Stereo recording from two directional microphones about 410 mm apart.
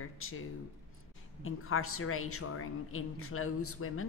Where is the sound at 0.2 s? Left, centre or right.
Left.